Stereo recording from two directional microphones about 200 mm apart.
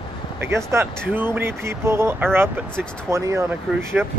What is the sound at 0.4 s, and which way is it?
Speech, 15° right (ahead or behind).